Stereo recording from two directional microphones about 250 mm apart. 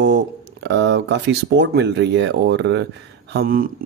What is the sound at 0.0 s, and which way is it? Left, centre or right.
Speech, right.